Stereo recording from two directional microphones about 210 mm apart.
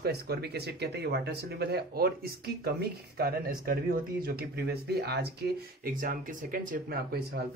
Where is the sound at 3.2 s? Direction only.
45° right (ahead or behind).